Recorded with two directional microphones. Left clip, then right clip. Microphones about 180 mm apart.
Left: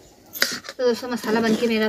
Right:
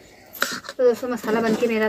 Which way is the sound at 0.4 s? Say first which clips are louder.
Left 2 dB; 30° left (ahead or behind).